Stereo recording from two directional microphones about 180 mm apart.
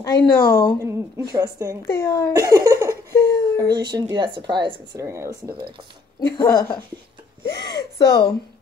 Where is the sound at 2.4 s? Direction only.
20° right (ahead or behind).